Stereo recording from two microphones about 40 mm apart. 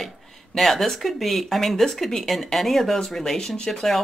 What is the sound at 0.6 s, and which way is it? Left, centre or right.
Speech, centre.